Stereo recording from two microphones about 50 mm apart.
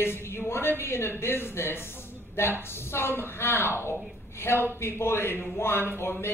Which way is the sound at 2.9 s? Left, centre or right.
Left.